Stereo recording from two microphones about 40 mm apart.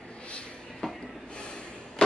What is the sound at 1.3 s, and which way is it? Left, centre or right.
Snort, left.